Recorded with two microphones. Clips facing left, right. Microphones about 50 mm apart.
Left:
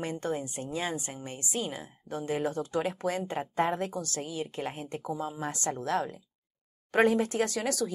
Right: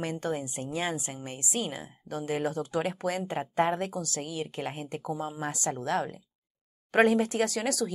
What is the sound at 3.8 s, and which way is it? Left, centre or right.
Speech, centre.